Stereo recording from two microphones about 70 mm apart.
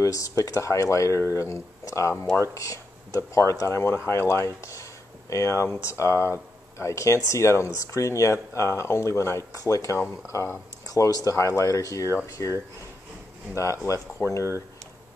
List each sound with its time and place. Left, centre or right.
0.0 s speech: left
10.3 s speech: left
10.9 s speech: left
13.6 s speech: left